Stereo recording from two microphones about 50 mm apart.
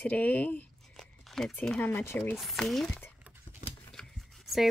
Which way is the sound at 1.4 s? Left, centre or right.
Centre.